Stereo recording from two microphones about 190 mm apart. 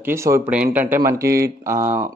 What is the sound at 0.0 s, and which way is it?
Speech, 15° right (ahead or behind).